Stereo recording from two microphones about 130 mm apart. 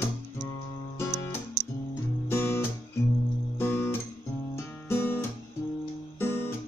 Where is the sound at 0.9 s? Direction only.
20° left (ahead or behind).